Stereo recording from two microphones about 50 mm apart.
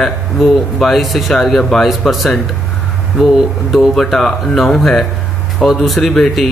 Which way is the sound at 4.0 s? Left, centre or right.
Centre.